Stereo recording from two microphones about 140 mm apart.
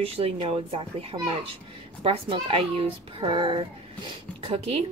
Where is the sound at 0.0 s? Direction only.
45° right (ahead or behind).